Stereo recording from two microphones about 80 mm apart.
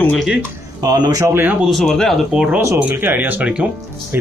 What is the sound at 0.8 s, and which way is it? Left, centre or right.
Speech, right.